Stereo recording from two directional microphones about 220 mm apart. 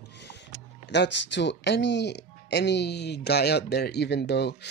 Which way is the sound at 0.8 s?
50° left (ahead or behind).